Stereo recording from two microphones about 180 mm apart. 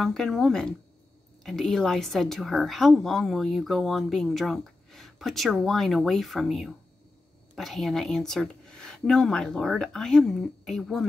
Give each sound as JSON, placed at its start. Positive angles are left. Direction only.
{"t": 0.0, "sound": "a woman's voice", "side_deg": 0}